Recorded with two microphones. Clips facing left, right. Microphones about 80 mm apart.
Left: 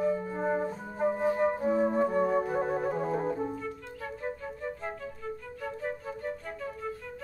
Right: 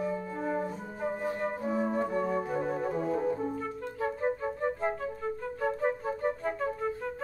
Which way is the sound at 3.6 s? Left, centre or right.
Right.